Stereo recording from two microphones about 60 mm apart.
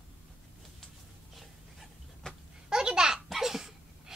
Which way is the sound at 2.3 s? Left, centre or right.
Centre.